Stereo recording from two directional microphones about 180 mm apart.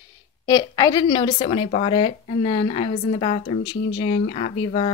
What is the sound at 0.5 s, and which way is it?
A woman's voice, 20° left (ahead or behind).